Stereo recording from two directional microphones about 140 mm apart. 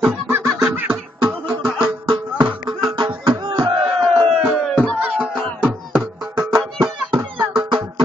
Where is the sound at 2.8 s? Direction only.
30° right (ahead or behind).